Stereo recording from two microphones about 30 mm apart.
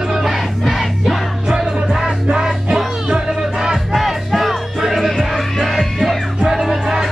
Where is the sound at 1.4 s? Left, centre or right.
Centre.